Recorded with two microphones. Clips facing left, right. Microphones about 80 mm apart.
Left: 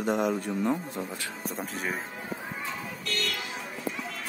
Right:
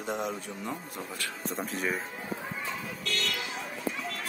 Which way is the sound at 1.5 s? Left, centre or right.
Centre.